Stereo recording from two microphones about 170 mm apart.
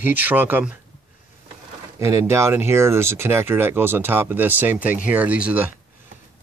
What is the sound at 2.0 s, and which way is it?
Speech, 15° right (ahead or behind).